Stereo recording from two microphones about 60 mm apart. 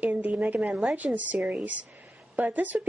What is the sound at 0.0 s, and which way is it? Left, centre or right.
A woman's voice, right.